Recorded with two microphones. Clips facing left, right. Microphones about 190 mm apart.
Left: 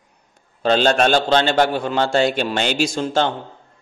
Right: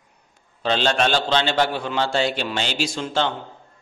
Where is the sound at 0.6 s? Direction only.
45° left (ahead or behind).